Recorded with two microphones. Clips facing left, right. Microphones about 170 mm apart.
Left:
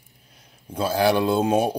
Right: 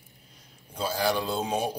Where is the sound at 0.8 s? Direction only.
65° left (ahead or behind).